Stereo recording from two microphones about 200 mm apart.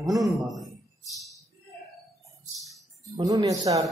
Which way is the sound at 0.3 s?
Centre (ahead or behind).